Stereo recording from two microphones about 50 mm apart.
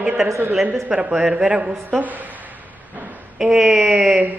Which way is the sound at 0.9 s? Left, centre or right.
Centre.